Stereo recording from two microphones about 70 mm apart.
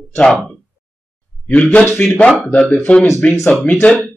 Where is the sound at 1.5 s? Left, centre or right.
Centre.